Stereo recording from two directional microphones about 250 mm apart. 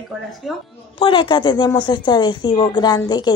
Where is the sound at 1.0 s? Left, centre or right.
Centre.